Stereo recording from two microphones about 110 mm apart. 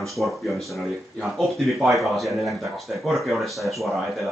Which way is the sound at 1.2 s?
Centre (ahead or behind).